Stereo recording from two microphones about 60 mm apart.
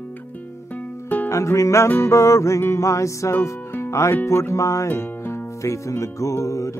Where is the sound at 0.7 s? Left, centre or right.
Left.